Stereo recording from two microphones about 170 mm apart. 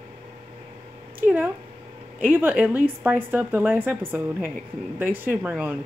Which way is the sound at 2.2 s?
10° right (ahead or behind).